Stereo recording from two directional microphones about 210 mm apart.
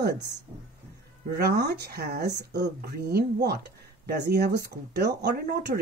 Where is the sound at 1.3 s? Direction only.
50° right (ahead or behind).